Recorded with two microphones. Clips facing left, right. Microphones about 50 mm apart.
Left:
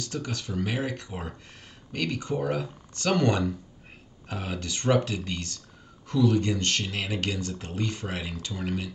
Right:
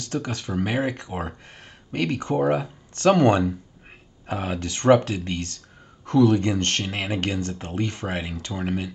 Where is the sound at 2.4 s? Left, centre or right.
Right.